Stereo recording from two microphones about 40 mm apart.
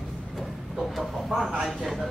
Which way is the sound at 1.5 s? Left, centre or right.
Centre.